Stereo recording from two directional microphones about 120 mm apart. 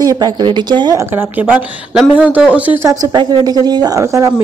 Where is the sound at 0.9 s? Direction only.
15° right (ahead or behind).